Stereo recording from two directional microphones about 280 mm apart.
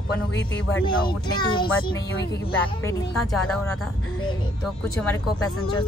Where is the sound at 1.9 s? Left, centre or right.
Left.